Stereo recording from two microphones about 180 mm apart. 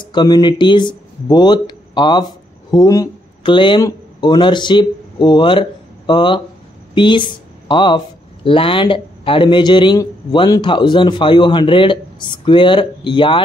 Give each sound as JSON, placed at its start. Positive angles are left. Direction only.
{"t": 0.0, "sound": "speech", "side_deg": 25}